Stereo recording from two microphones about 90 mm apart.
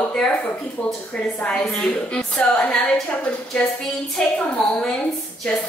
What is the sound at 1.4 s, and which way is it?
A woman's voice, 10° left (ahead or behind).